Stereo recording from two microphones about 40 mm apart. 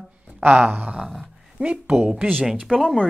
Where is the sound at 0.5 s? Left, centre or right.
Right.